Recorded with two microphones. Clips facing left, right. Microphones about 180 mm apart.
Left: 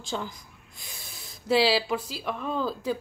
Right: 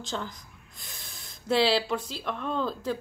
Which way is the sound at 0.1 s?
10° left (ahead or behind).